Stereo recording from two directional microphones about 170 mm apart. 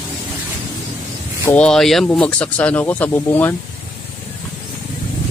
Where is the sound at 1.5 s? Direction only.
5° left (ahead or behind).